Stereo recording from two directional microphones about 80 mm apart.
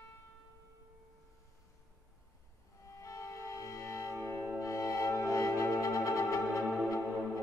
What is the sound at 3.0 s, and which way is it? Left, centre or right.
Music, left.